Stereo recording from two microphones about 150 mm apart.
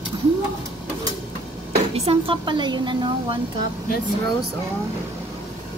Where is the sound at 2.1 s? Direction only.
35° right (ahead or behind).